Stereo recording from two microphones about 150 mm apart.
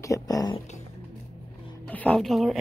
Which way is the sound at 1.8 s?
10° left (ahead or behind).